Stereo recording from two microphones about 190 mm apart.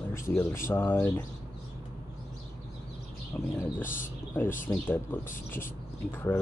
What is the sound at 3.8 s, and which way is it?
Speech, 45° left (ahead or behind).